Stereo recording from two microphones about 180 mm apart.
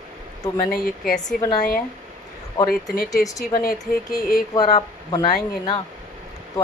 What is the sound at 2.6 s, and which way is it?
Speech, 20° left (ahead or behind).